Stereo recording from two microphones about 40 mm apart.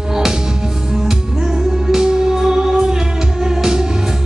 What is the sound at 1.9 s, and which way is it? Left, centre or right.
Music, centre.